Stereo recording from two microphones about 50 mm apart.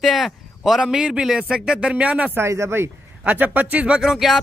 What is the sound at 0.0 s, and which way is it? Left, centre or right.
A man's voice, centre.